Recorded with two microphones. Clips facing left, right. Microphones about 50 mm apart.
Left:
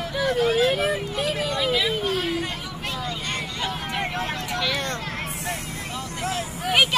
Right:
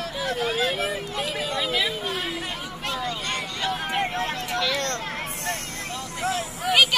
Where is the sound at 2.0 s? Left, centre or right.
Centre.